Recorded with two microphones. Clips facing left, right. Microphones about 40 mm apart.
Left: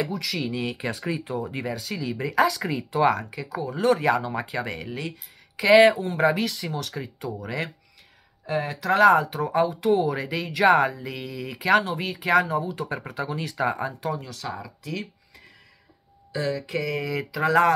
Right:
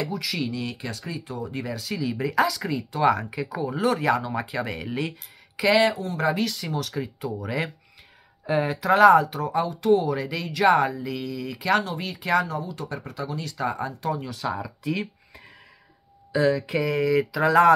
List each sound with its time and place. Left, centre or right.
0.1 s speech: centre
0.5 s speech: left
1.8 s speech: centre
3.1 s speech: centre
5.8 s speech: left
6.2 s speech: centre
12.7 s speech: left
14.1 s speech: centre